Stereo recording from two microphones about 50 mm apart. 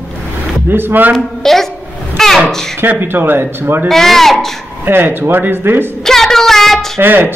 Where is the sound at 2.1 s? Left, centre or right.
Centre.